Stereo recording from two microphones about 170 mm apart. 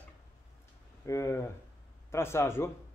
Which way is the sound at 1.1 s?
15° left (ahead or behind).